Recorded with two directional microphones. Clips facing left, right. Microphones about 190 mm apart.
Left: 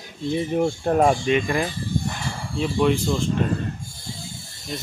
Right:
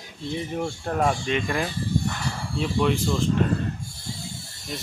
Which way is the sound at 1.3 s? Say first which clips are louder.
Left 4 dB; 5° left (ahead or behind).